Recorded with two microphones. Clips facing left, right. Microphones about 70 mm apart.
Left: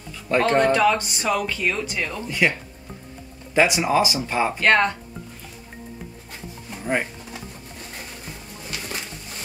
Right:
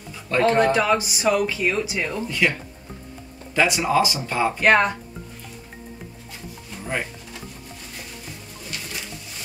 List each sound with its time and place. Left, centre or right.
0.4 s speech: centre
2.2 s speech: centre
3.5 s speech: left
4.6 s speech: centre